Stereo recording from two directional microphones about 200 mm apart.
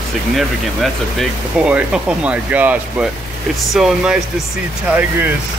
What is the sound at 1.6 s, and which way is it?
Speech, 5° right (ahead or behind).